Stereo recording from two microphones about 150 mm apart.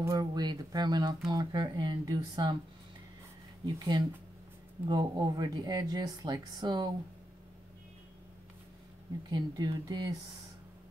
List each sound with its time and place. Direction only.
0.0 s speech: 25° right (ahead or behind)
3.6 s speech: 30° right (ahead or behind)
9.3 s speech: 30° right (ahead or behind)